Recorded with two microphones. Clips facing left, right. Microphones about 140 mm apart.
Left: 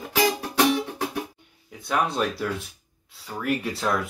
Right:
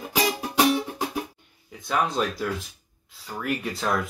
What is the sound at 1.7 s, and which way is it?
Speech, centre (ahead or behind).